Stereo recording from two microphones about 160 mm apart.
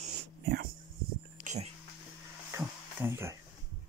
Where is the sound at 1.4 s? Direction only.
50° right (ahead or behind).